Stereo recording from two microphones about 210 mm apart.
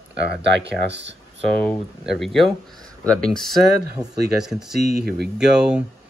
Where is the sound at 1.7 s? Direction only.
Centre (ahead or behind).